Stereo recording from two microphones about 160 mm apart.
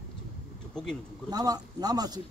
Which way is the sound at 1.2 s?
25° right (ahead or behind).